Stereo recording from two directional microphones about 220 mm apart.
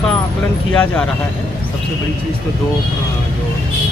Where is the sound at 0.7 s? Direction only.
5° left (ahead or behind).